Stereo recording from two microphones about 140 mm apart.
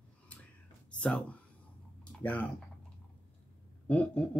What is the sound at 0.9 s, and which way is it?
Speech, 5° left (ahead or behind).